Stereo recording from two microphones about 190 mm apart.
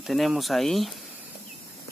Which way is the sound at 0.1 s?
Centre (ahead or behind).